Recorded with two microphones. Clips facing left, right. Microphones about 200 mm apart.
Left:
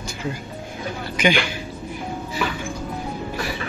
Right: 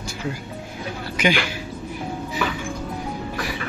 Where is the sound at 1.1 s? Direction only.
5° right (ahead or behind).